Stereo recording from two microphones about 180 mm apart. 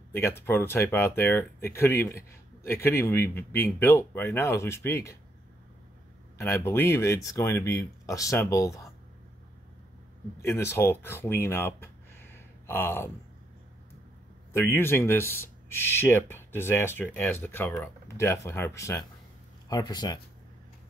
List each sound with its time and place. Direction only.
0.1 s speech: 15° left (ahead or behind)
6.3 s speech: 15° left (ahead or behind)
10.4 s speech: 15° left (ahead or behind)
14.5 s speech: 10° left (ahead or behind)